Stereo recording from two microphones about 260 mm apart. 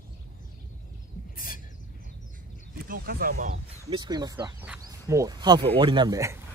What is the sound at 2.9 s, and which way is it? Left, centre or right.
Speech, right.